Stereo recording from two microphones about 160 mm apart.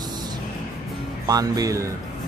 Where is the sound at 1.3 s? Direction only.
25° right (ahead or behind).